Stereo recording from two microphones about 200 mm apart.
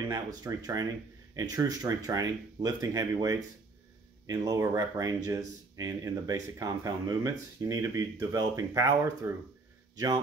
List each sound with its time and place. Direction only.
0.4 s speech: 20° right (ahead or behind)